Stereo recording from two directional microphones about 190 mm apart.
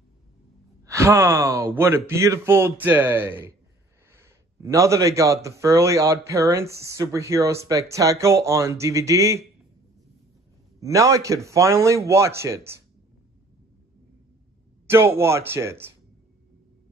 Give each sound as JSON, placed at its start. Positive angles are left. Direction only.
{"t": 0.8, "sound": "a man's voice", "side_deg": -15}
{"t": 10.8, "sound": "a man's voice", "side_deg": -15}
{"t": 14.9, "sound": "a man's voice", "side_deg": -15}